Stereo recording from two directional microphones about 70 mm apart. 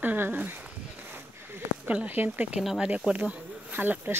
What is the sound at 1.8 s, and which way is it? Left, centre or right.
Speech, centre.